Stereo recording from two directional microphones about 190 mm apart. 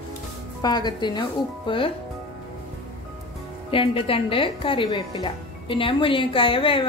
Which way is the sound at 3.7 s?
30° left (ahead or behind).